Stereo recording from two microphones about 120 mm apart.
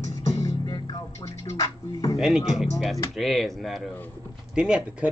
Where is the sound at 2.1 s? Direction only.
5° right (ahead or behind).